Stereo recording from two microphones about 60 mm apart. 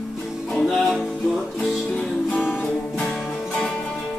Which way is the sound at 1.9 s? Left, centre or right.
Centre.